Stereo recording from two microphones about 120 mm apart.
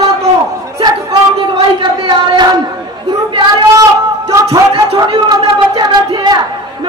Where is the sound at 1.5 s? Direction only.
45° right (ahead or behind).